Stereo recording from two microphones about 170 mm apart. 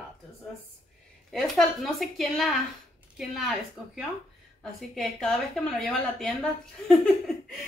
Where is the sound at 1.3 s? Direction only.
Centre (ahead or behind).